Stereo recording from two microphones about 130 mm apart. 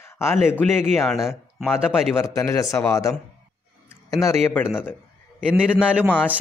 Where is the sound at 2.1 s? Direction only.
20° left (ahead or behind).